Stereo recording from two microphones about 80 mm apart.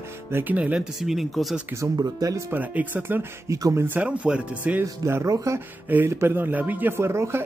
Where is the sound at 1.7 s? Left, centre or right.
Right.